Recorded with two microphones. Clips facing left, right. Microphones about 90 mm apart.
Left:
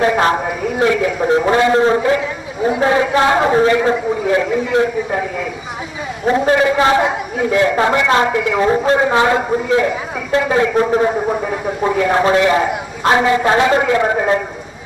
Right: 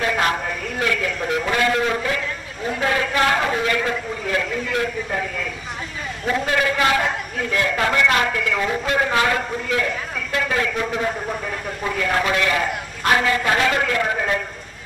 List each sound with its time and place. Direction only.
0.0 s a man's voice: 30° left (ahead or behind)
0.5 s a man's voice: 15° left (ahead or behind)
1.3 s a man's voice: 30° left (ahead or behind)
2.0 s a man's voice: 20° left (ahead or behind)
7.1 s a man's voice: 10° left (ahead or behind)
7.5 s a man's voice: 25° left (ahead or behind)
8.6 s a man's voice: 30° left (ahead or behind)